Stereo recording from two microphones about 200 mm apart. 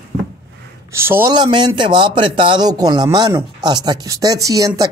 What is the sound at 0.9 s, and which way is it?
Speech, 10° right (ahead or behind).